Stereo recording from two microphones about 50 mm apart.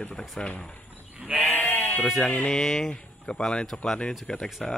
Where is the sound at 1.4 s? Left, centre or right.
Left.